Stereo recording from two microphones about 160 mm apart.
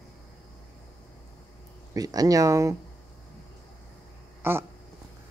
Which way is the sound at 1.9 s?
25° right (ahead or behind).